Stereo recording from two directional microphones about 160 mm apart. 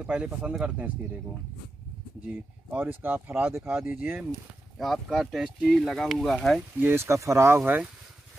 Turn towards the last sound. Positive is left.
turn(degrees=-10)  # may be behind; listen again after turning